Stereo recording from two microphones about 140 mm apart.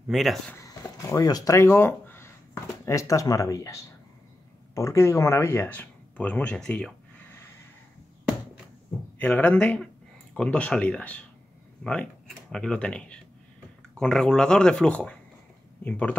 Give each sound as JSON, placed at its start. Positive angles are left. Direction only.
{"t": 0.1, "sound": "speech", "side_deg": 0}
{"t": 0.6, "sound": "speech", "side_deg": 25}
{"t": 9.2, "sound": "speech", "side_deg": 10}